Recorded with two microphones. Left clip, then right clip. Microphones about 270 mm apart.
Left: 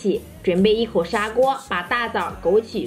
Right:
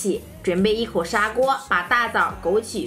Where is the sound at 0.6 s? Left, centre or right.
Right.